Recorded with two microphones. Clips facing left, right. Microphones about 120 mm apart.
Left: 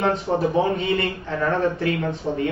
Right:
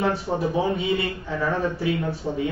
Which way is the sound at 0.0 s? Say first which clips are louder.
Left 3 dB; 5° right (ahead or behind).